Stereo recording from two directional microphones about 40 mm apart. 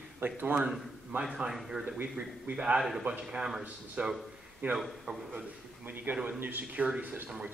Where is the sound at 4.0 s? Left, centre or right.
Right.